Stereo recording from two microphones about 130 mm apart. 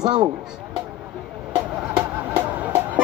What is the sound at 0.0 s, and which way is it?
Speech, 30° right (ahead or behind).